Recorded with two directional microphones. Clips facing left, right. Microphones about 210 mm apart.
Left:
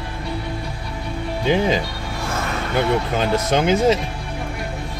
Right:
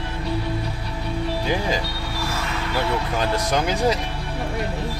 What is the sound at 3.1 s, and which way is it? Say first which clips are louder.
Music: left 3 dB; 25° left (ahead or behind).